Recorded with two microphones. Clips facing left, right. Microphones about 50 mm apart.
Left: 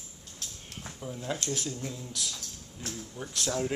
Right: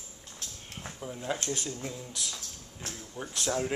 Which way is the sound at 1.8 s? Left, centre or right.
Centre.